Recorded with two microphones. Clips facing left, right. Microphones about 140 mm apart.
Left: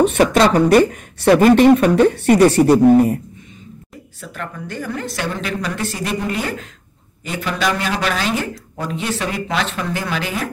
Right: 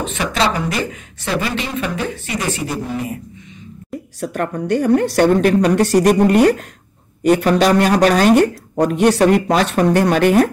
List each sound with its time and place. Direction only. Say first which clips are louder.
0.2 s speech: left 2 dB; 55° left (ahead or behind)
4.2 s a woman's voice: right 9 dB; 60° right (ahead or behind)
5.2 s speech: right 11 dB; 50° right (ahead or behind)
5.8 s speech: right 11 dB; 70° right (ahead or behind)
6.0 s speech: right 8 dB; 45° right (ahead or behind)
7.4 s speech: right 3 dB; 45° right (ahead or behind); by 9.2 s 60° right (ahead or behind)
9.2 s speech: right 9 dB; 45° right (ahead or behind)